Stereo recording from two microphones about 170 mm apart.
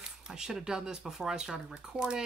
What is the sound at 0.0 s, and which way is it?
Speech, 5° right (ahead or behind).